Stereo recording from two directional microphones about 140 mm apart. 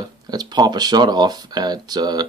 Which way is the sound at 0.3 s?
30° right (ahead or behind).